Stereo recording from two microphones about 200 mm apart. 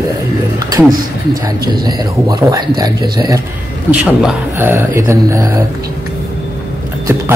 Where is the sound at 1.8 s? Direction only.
20° right (ahead or behind).